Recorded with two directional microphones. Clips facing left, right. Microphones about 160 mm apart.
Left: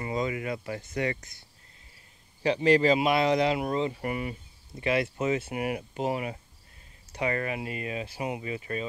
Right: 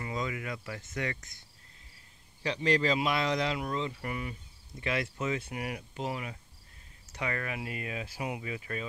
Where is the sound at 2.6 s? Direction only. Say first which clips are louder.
Left 6 dB; 5° left (ahead or behind).